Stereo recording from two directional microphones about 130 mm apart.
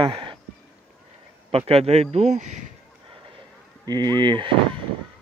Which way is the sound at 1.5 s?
50° right (ahead or behind).